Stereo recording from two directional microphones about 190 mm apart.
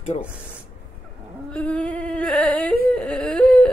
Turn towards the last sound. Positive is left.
turn(degrees=5)  # may be behind; listen again after turning